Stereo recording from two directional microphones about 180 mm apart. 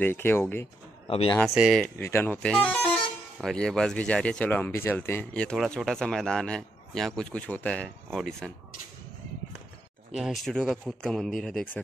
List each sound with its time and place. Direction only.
0.0 s speech: 10° left (ahead or behind)
1.0 s speech: 30° left (ahead or behind)
1.3 s speech: centre (ahead or behind)
2.0 s speech: 15° left (ahead or behind)
10.1 s speech: centre (ahead or behind)